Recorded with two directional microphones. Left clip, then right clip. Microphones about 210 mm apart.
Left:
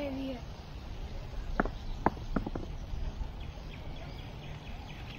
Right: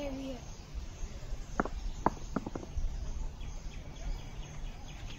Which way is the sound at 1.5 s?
10° right (ahead or behind).